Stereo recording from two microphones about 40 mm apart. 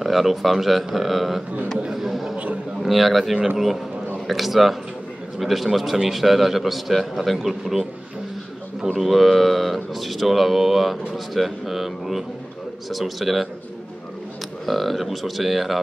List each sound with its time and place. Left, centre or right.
0.0 s a man's voice: centre
2.3 s a man's voice: right
2.8 s speech: centre
8.9 s speech: centre
14.7 s speech: centre